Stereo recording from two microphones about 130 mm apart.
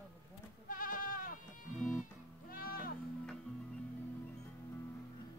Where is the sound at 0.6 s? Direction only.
90° left.